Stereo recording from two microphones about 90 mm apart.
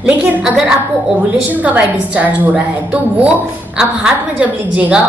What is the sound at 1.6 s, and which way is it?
A woman's voice, 15° right (ahead or behind).